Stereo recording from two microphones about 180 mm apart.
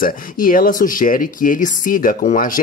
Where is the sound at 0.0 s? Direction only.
50° left (ahead or behind).